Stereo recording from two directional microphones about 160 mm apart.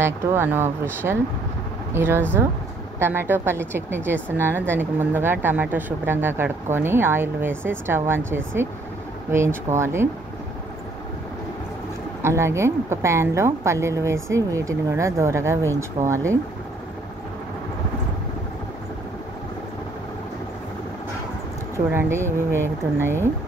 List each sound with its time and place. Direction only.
0.0 s a woman's voice: 15° right (ahead or behind)
12.2 s a woman's voice: 15° right (ahead or behind)
21.7 s a woman's voice: 15° right (ahead or behind)